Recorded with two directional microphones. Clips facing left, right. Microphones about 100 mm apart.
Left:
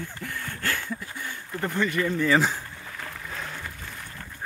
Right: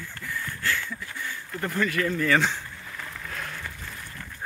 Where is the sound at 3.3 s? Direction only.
Centre (ahead or behind).